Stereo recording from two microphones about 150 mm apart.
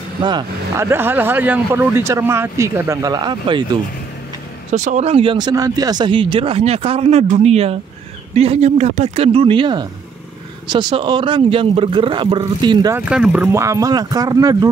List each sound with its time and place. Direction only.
0.2 s speech: 30° right (ahead or behind)
0.7 s speech: 15° right (ahead or behind)
4.7 s speech: 55° right (ahead or behind); by 12.9 s 30° right (ahead or behind)
12.9 s speech: 5° right (ahead or behind)
13.6 s speech: 20° right (ahead or behind)